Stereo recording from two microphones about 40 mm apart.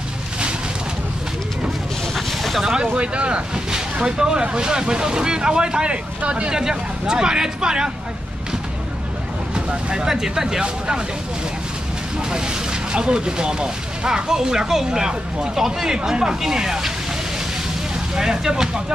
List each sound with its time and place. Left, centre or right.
2.1 s a sound: centre
2.6 s speech: centre
3.0 s speech: right
9.5 s vehicle: right
10.0 s speech: centre
12.2 s speech: centre
18.1 s speech: centre